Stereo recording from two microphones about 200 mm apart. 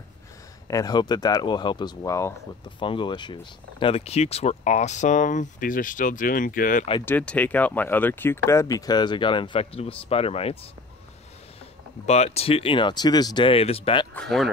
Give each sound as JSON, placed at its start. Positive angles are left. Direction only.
{"t": 0.7, "sound": "speech", "side_deg": 20}
{"t": 7.1, "sound": "speech", "side_deg": 10}
{"t": 12.1, "sound": "speech", "side_deg": 30}
{"t": 14.1, "sound": "speech", "side_deg": 0}